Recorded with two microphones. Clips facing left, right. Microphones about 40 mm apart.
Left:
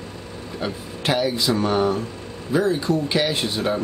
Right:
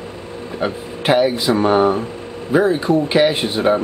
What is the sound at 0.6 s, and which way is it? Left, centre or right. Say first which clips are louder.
Speech: right 6 dB; right.